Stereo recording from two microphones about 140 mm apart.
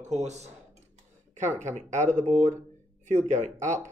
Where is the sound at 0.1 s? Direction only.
55° right (ahead or behind).